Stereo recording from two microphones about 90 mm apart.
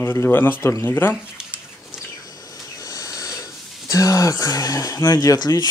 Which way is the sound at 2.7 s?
40° left (ahead or behind).